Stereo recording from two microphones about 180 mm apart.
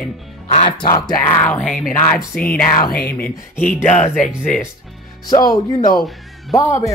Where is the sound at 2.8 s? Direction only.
55° left (ahead or behind).